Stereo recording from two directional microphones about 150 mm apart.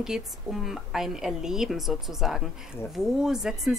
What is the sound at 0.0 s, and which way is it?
A woman's voice, centre (ahead or behind).